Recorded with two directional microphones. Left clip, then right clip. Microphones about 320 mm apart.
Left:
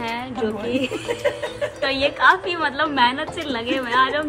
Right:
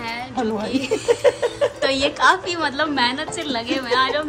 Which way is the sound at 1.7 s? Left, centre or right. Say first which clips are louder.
Right 1 dB; centre.